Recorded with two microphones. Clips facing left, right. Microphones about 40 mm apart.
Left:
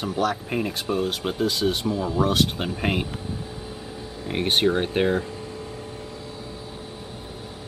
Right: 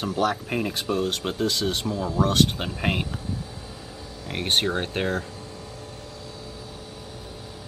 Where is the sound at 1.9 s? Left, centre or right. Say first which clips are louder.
Left 2 dB; left.